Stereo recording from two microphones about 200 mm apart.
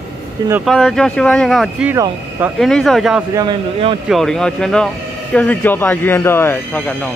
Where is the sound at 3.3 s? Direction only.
25° right (ahead or behind).